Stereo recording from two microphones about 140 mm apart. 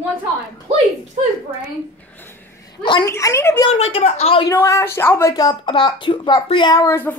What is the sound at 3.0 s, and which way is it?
Speech, 20° left (ahead or behind).